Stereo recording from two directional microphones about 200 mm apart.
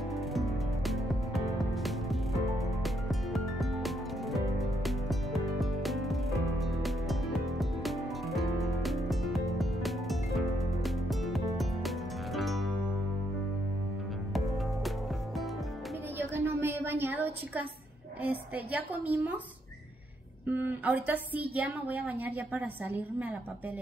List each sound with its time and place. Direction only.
0.1 s music: centre (ahead or behind)
16.2 s a sound: 10° right (ahead or behind)
18.2 s a woman's voice: 10° right (ahead or behind)
20.4 s a woman's voice: 10° right (ahead or behind)